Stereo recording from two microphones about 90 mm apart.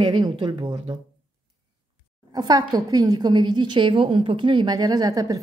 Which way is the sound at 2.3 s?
50° right (ahead or behind).